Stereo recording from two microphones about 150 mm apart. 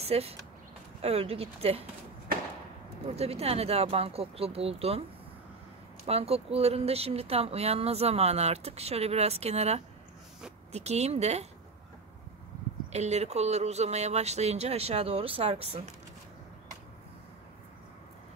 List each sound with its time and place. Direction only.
0.0 s speech: 40° right (ahead or behind)
3.2 s speech: 40° right (ahead or behind)
6.0 s speech: 40° right (ahead or behind)
12.9 s speech: 50° right (ahead or behind)